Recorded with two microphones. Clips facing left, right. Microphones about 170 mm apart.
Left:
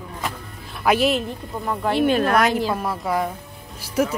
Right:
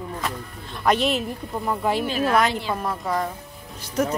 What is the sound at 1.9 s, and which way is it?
Speech, 60° left (ahead or behind).